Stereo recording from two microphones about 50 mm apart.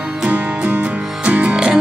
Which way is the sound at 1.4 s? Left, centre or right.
Centre.